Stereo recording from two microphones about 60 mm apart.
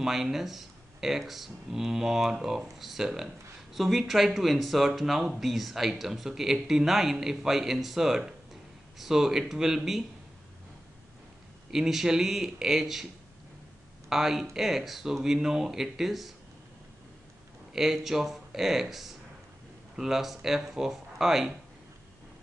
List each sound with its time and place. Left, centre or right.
0.0 s speech: centre
11.7 s speech: centre
14.0 s speech: centre
17.7 s speech: centre